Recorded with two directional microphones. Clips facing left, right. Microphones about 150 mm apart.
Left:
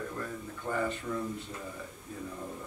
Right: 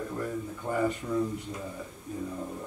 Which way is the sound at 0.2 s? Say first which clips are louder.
Right 5 dB; 15° right (ahead or behind).